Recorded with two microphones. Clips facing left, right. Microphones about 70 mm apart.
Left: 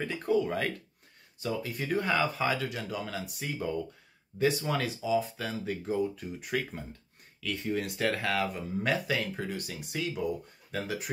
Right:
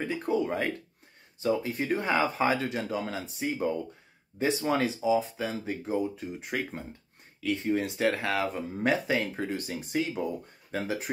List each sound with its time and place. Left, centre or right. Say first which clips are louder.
0.0 s speech: even; centre